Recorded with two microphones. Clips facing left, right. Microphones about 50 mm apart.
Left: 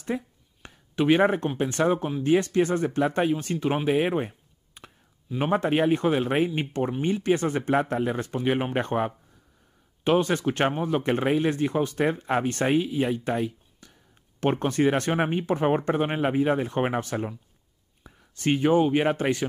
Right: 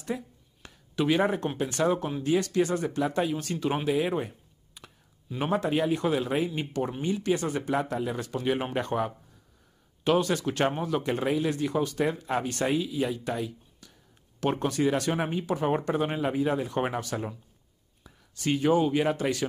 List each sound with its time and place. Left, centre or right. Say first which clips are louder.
0.0 s a sound: left 3 dB; left
1.6 s speech: left 2 dB; left
5.4 s speech: left 3 dB; left